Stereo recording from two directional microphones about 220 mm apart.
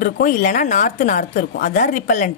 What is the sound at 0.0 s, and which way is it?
A woman's voice, 35° left (ahead or behind).